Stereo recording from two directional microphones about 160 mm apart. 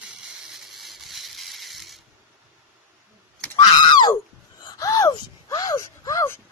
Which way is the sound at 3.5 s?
25° left (ahead or behind).